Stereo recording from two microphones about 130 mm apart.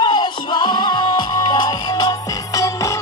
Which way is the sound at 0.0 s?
35° left (ahead or behind).